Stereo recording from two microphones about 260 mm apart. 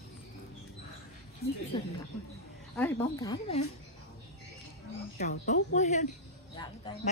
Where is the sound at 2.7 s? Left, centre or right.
Centre.